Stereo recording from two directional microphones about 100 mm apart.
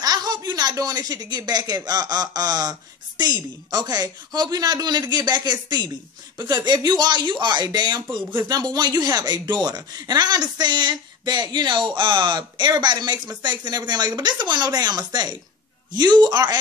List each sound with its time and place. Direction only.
0.0 s speech: 40° right (ahead or behind)